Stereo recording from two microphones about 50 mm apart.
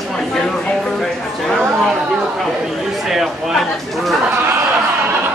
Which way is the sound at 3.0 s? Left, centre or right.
Centre.